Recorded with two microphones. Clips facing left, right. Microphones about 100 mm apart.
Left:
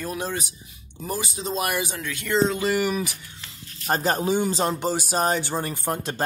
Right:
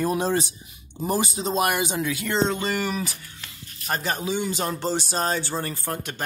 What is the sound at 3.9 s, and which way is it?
Speech, 40° left (ahead or behind).